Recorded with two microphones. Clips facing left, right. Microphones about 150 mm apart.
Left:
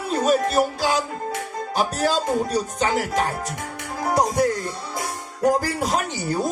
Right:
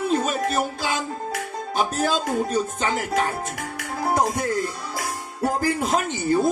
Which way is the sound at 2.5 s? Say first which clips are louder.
Left 2 dB; 40° left (ahead or behind).